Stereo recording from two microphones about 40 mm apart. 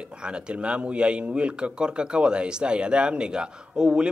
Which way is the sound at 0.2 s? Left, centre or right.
Right.